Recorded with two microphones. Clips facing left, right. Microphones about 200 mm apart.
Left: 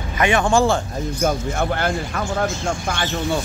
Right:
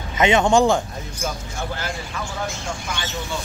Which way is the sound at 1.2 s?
60° left (ahead or behind).